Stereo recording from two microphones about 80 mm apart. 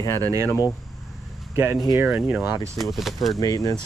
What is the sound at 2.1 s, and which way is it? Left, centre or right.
Speech, centre.